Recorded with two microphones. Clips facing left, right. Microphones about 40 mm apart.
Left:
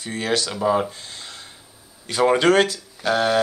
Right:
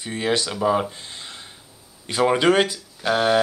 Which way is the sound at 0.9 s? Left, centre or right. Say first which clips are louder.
Even; right.